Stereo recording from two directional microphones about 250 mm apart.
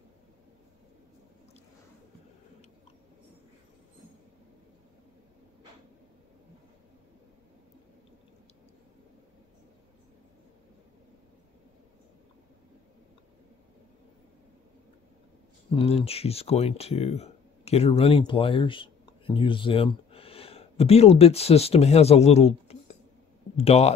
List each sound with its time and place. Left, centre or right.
15.7 s speech: left